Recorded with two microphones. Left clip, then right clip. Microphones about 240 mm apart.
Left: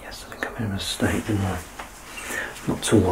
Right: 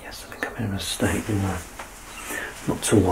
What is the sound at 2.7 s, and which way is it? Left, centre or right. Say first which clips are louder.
Speech: right 2 dB; centre.